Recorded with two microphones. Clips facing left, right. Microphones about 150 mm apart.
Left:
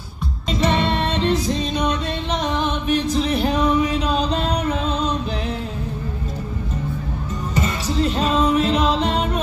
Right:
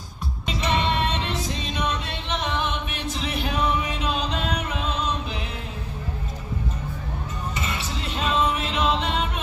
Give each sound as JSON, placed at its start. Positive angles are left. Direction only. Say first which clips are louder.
{"t": 0.5, "sound": "music", "louder": "left 5 dB", "side_deg": 35}
{"t": 7.5, "sound": "music", "louder": "left 12 dB", "side_deg": 40}